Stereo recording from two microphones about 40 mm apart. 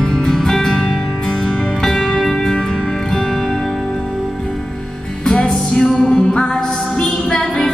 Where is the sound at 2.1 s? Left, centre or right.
Left.